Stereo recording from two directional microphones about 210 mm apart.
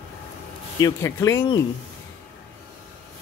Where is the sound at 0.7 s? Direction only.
15° left (ahead or behind).